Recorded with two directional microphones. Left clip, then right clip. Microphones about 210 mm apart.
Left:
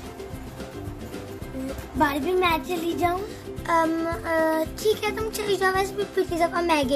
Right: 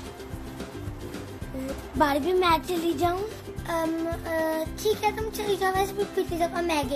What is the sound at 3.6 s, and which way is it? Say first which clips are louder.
Child singing: left 5 dB; 40° left (ahead or behind).